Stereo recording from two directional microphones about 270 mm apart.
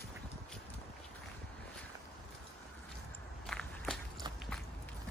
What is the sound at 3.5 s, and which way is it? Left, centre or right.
Walk, centre.